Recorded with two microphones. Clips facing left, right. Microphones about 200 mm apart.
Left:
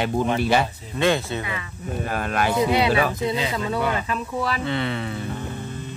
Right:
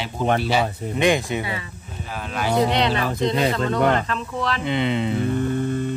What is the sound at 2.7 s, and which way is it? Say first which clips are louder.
Speech: left 2 dB; 10° left (ahead or behind).